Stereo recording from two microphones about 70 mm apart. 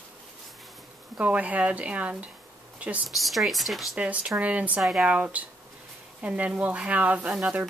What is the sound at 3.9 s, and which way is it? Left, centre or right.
Speech, centre.